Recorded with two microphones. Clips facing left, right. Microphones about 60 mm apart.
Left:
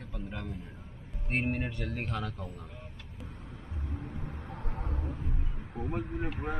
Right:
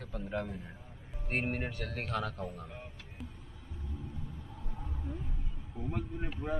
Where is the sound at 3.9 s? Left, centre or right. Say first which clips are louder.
Left 4 dB; left.